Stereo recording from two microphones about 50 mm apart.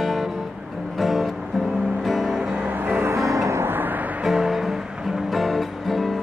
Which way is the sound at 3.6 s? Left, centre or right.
Right.